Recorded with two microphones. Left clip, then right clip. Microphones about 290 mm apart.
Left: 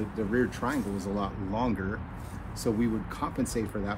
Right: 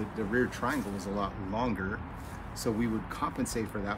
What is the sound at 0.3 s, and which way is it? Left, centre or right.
Speech, centre.